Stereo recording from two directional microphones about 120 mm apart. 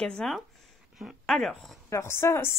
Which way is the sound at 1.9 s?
20° left (ahead or behind).